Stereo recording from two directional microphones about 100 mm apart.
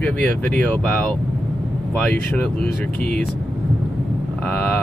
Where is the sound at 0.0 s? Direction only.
15° left (ahead or behind).